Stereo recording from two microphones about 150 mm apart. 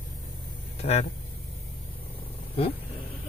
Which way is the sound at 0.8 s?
45° left (ahead or behind).